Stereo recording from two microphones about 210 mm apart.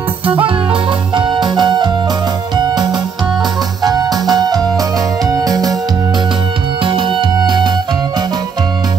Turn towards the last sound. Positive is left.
turn(degrees=-20)  # may be behind; listen again after turning